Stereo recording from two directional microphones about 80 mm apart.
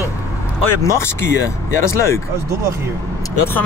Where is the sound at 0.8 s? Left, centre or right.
Left.